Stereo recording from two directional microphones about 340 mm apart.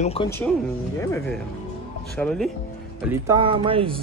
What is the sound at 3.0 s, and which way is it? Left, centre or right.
Speech, centre.